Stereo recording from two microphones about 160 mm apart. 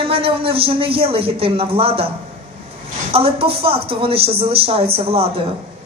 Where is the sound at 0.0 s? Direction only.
35° right (ahead or behind).